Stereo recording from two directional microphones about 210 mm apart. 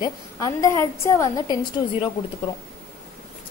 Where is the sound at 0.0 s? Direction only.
15° left (ahead or behind).